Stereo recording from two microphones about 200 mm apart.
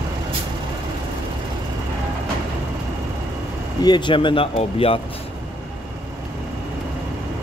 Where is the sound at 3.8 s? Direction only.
20° left (ahead or behind).